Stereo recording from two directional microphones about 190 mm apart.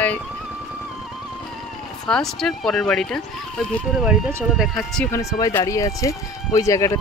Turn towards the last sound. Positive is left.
turn(degrees=15)  # may be behind; listen again after turning